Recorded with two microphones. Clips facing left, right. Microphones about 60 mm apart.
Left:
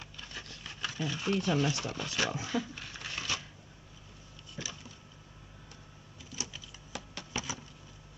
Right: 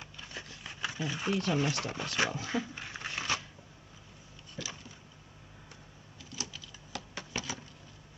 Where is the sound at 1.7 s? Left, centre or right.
Right.